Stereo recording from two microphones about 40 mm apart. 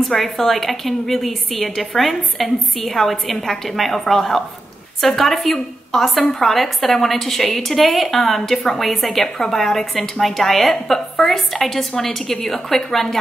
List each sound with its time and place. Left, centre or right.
0.2 s a woman's voice: centre